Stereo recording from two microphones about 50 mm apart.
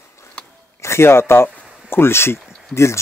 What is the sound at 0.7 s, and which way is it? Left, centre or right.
A man's voice, left.